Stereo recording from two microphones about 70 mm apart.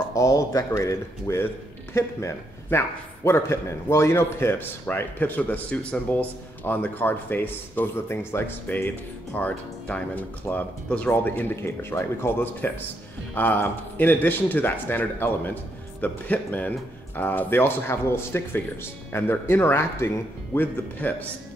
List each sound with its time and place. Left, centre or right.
0.1 s a man's voice: left
11.6 s a man's voice: left
20.5 s a man's voice: left